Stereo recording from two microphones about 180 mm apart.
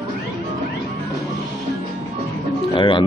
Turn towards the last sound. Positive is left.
turn(degrees=30)  # may be behind; listen again after turning